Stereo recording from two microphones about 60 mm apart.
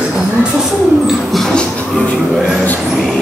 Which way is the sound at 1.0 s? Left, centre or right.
Centre.